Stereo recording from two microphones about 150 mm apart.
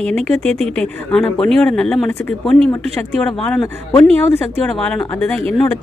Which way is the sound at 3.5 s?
15° left (ahead or behind).